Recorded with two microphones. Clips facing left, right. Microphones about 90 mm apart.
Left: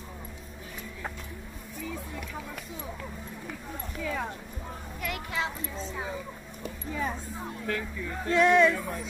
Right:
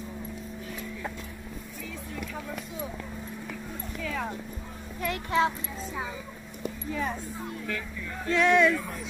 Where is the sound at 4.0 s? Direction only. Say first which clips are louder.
Even; 15° left (ahead or behind).